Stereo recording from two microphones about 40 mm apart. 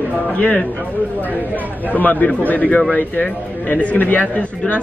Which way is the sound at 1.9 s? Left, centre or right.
Left.